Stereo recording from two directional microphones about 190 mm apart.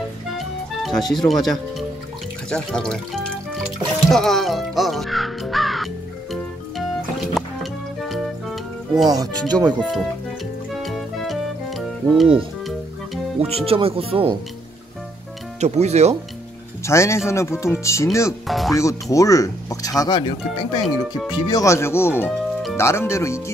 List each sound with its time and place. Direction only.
0.4 s music: centre (ahead or behind)
2.5 s speech: 5° left (ahead or behind)
7.3 s music: centre (ahead or behind)
9.5 s speech: 20° right (ahead or behind)
9.8 s speech: centre (ahead or behind)
10.7 s music: centre (ahead or behind)
13.7 s speech: 30° right (ahead or behind)
15.6 s speech: 35° right (ahead or behind)
16.8 s speech: 15° left (ahead or behind)
18.5 s speech: centre (ahead or behind)
18.8 s speech: 15° left (ahead or behind)